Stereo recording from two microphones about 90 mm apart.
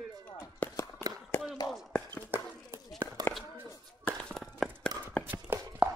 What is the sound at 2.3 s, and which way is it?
Clip-clop, 25° right (ahead or behind).